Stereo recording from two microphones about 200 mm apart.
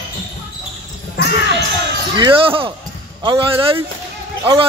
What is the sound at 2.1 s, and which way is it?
Speech, 25° right (ahead or behind).